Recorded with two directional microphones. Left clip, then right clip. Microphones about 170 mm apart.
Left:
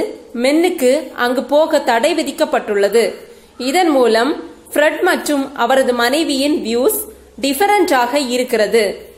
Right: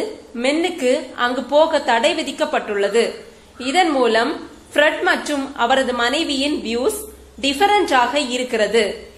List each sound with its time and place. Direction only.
0.4 s a woman's voice: 35° left (ahead or behind)